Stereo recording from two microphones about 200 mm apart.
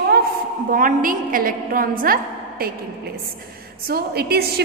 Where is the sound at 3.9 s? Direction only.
50° right (ahead or behind).